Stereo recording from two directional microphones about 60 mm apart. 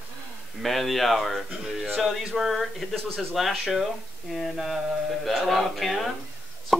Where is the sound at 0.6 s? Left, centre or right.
Centre.